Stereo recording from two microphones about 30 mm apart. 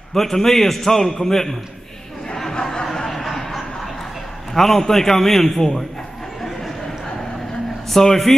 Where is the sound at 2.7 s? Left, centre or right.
Centre.